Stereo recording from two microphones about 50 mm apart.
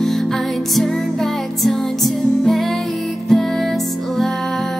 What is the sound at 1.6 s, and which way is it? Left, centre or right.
Music, centre.